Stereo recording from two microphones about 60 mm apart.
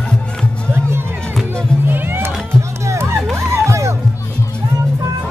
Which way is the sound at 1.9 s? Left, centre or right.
Right.